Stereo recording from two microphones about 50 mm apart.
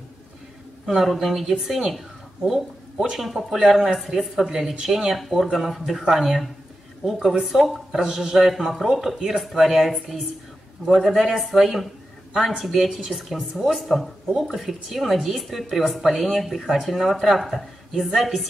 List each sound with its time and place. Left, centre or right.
0.8 s speech: centre